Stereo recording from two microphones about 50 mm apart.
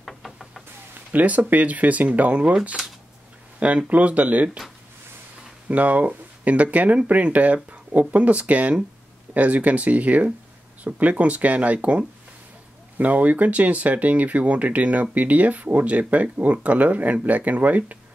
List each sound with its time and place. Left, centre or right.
0.0 s music: centre
1.1 s speech: right
5.7 s speech: right